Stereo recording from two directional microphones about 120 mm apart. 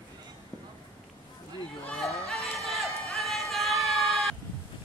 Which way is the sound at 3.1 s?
Centre (ahead or behind).